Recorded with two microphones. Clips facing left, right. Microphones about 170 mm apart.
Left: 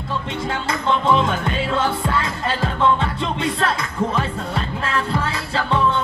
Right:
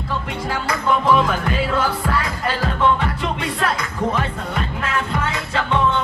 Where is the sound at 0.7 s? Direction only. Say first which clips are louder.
Right 1 dB; 25° left (ahead or behind).